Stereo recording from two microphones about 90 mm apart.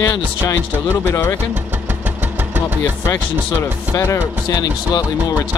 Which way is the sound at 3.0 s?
25° left (ahead or behind).